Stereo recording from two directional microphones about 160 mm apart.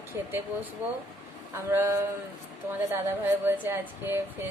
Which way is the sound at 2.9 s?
15° right (ahead or behind).